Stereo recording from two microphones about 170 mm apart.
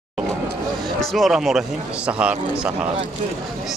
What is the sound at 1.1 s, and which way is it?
A man's voice, centre (ahead or behind).